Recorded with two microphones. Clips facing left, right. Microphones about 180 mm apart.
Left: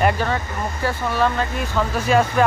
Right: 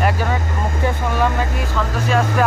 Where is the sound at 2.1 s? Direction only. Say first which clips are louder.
Left 1 dB; centre (ahead or behind).